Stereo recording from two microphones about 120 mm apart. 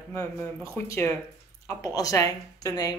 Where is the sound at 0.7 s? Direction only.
20° left (ahead or behind).